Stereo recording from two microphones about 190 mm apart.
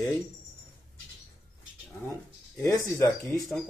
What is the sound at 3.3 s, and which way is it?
Speech, centre (ahead or behind).